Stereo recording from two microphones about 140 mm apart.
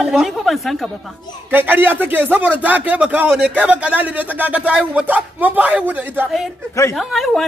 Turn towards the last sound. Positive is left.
turn(degrees=0)  # may be behind; listen again after turning